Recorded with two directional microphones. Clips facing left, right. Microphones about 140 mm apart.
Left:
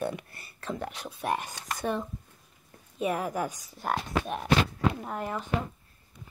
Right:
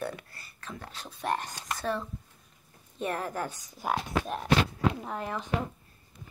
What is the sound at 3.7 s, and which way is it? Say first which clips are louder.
Speech: even; centre (ahead or behind).